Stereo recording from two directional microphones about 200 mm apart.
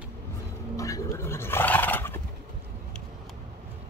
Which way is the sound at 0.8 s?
15° left (ahead or behind).